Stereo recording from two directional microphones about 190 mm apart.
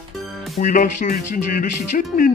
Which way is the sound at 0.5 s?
45° left (ahead or behind).